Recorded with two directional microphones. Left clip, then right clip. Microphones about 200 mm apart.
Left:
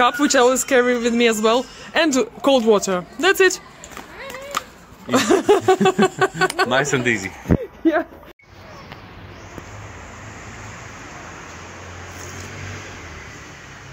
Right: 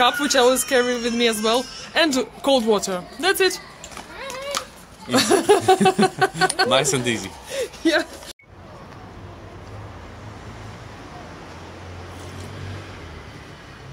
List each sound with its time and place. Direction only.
0.0 s speech: 50° left (ahead or behind)
5.1 s speech: 50° left (ahead or behind)
6.7 s speech: 15° left (ahead or behind)
7.8 s a sound: 35° left (ahead or behind)